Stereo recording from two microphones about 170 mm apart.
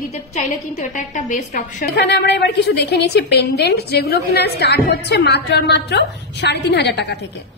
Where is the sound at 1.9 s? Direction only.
80° left.